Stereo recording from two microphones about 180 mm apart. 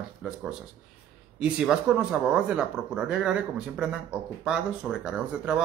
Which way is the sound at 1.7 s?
5° right (ahead or behind).